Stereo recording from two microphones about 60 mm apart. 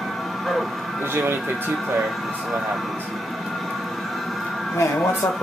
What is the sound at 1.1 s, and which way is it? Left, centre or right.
Speech, right.